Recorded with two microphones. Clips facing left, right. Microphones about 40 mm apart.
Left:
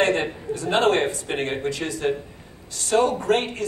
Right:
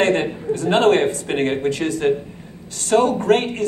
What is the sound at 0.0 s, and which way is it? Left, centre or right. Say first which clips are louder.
A man's voice: right 3 dB; right.